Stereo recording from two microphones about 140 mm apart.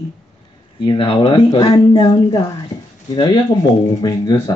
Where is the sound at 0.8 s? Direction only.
35° left (ahead or behind).